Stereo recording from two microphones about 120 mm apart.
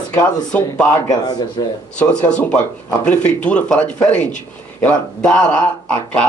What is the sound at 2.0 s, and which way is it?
Speech, 10° left (ahead or behind).